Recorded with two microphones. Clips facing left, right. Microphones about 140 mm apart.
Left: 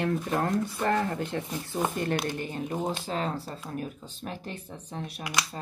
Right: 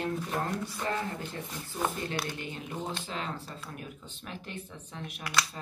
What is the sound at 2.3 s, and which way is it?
A woman's voice, 40° left (ahead or behind).